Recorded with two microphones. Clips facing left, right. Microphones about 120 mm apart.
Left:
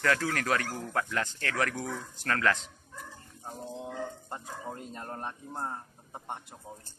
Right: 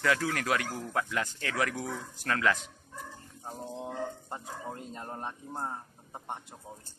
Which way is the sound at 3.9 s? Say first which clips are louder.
Right 1 dB; 15° right (ahead or behind).